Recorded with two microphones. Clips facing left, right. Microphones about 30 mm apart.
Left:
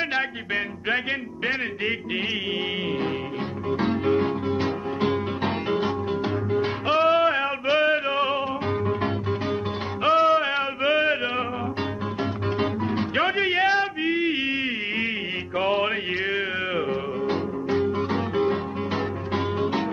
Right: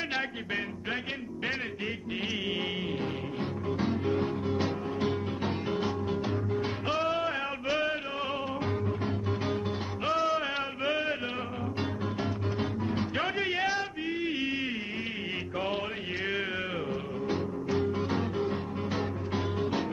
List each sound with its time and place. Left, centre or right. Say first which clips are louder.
3.7 s music: left 8 dB; left
4.5 s music: left 5 dB; left
5.1 s music: left 6 dB; left
10.0 s a sound: left 10 dB; left
12.5 s music: left 8 dB; left
15.5 s music: left 10 dB; left
17.3 s music: left 4 dB; left
18.3 s music: left 8 dB; left
18.9 s music: left 6 dB; left